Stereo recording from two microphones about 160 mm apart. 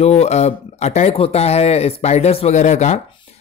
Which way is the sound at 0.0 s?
40° left (ahead or behind).